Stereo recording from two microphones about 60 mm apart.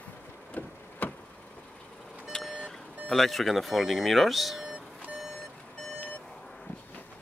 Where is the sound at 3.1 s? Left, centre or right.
Centre.